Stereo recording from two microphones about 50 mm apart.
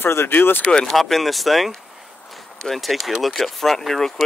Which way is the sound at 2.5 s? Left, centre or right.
Centre.